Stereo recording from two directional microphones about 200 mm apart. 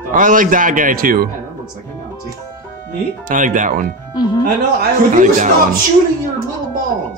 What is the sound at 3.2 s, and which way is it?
Speech, 40° right (ahead or behind).